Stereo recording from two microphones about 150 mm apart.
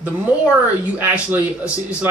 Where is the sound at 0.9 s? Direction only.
10° right (ahead or behind).